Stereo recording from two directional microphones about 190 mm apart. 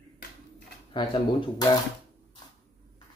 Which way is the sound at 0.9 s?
25° left (ahead or behind).